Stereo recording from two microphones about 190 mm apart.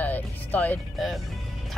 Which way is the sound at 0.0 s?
10° left (ahead or behind).